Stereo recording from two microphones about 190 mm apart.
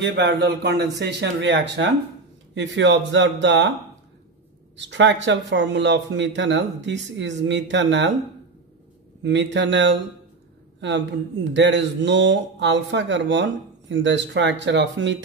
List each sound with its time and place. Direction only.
0.0 s speech: 65° right (ahead or behind)
4.7 s speech: 70° right (ahead or behind)
9.2 s speech: 70° right (ahead or behind)